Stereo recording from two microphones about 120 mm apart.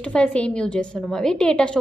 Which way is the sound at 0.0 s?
10° left (ahead or behind).